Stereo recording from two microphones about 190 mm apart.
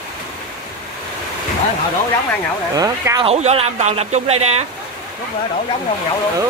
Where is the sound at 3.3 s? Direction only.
35° right (ahead or behind).